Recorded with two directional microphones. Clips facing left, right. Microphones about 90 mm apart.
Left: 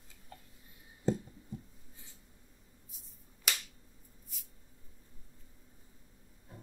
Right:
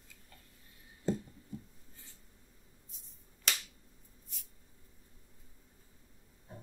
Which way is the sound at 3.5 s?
5° left (ahead or behind).